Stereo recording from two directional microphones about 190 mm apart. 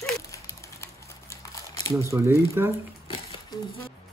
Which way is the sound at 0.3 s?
15° left (ahead or behind).